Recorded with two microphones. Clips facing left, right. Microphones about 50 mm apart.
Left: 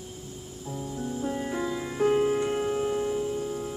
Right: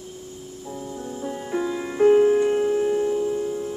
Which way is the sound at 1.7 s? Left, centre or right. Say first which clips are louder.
Right 9 dB; centre.